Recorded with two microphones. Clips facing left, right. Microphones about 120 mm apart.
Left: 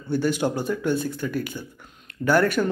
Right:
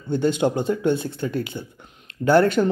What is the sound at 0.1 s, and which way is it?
Speech, 20° right (ahead or behind).